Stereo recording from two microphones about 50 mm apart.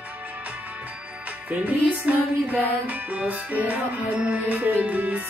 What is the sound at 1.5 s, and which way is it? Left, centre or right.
Music, right.